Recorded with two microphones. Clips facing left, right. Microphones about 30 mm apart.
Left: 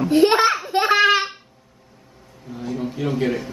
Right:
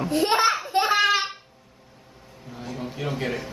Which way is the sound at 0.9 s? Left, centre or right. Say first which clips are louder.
Left 6 dB; centre.